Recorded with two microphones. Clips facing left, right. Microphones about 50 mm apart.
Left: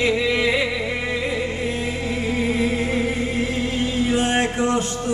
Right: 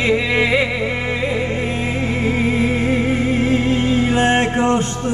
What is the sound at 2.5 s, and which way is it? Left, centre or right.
Music, right.